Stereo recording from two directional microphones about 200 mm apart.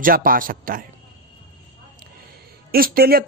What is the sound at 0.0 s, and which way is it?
Speech, 45° right (ahead or behind).